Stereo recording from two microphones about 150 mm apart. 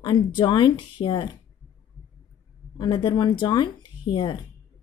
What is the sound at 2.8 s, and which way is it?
Speech, 30° left (ahead or behind).